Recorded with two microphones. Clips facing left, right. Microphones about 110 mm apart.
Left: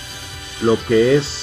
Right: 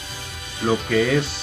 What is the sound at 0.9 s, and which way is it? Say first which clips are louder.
Speech: left 7 dB; 25° left (ahead or behind).